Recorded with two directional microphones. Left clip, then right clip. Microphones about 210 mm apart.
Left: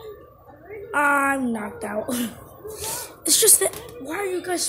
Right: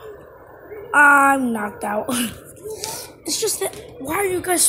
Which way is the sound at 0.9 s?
15° right (ahead or behind).